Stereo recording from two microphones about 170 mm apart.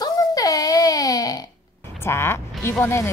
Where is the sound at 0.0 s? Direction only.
20° left (ahead or behind).